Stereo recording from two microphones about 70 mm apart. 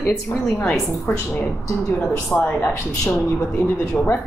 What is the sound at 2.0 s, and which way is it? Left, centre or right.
Speech, centre.